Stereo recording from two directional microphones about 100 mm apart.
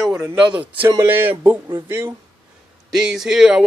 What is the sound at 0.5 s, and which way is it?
Speech, 15° right (ahead or behind).